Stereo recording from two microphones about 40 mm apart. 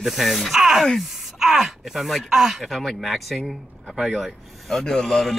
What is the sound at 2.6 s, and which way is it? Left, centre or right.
A man's voice, centre.